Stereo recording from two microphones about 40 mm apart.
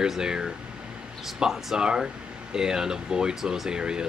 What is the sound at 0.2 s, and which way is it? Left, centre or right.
Speech, centre.